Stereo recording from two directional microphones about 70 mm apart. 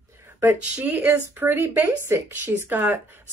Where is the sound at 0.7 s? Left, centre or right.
Right.